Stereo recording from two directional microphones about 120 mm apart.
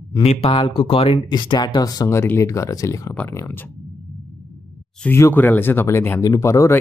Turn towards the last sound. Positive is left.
turn(degrees=25)  # may be behind; listen again after turning